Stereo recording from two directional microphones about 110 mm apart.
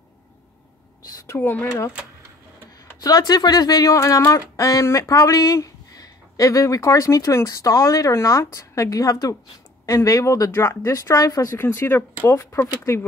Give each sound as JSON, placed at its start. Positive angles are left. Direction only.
{"t": 1.2, "sound": "speech", "side_deg": 20}
{"t": 3.0, "sound": "speech", "side_deg": 35}